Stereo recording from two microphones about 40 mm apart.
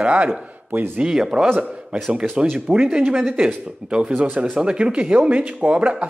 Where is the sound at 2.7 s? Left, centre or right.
Right.